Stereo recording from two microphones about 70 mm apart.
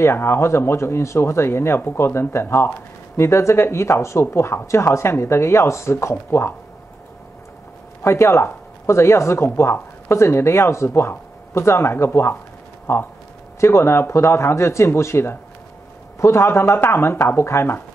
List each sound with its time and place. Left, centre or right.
0.0 s speech: left
8.0 s speech: left